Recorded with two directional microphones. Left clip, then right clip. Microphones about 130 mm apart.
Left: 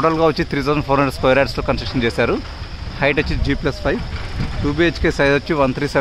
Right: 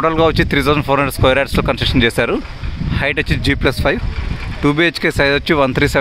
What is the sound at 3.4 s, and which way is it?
Speech, 60° right (ahead or behind).